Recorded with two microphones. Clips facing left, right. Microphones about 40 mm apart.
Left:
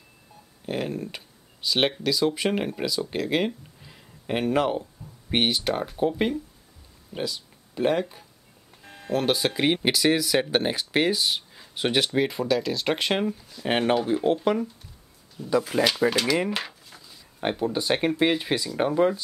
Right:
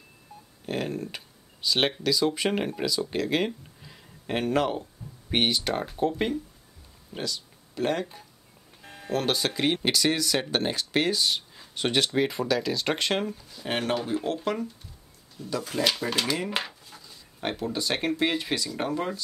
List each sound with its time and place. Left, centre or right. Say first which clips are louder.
0.7 s speech: left 1 dB; centre
16.4 s a sound: left 1 dB; centre
17.4 s speech: left 4 dB; centre